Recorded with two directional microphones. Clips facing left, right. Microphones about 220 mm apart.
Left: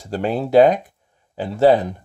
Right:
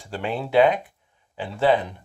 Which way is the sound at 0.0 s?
40° left (ahead or behind).